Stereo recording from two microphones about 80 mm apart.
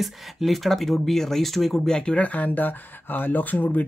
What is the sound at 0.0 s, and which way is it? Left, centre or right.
Speech, centre.